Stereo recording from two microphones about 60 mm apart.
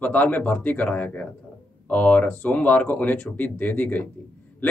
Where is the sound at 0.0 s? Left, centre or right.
Left.